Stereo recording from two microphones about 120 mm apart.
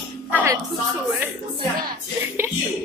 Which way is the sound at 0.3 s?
15° right (ahead or behind).